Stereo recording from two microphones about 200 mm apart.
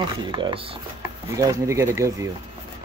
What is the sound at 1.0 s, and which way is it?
Speech, 15° right (ahead or behind).